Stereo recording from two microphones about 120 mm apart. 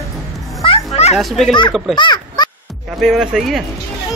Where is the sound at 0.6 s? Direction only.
55° left (ahead or behind).